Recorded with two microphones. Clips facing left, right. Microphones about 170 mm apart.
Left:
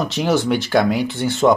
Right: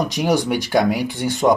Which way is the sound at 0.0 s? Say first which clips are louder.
Even; 15° right (ahead or behind).